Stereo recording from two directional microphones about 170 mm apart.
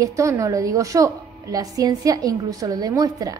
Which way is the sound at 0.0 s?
15° right (ahead or behind).